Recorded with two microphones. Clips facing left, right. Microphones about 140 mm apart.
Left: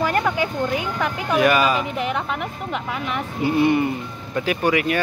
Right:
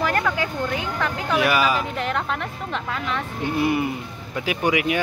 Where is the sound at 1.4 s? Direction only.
5° right (ahead or behind).